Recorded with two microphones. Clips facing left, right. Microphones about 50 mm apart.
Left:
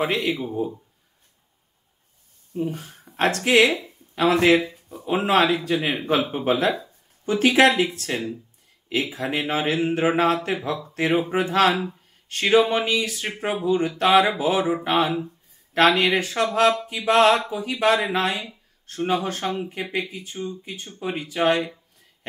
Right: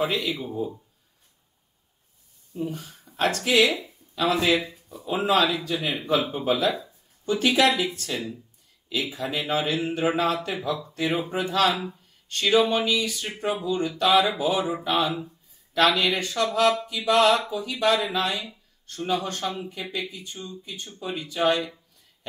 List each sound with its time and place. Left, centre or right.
0.0 s speech: left
2.5 s speech: left
4.8 s a sound: left
5.1 s speech: left